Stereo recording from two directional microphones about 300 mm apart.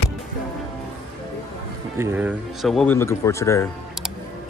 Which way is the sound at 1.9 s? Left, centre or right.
Centre.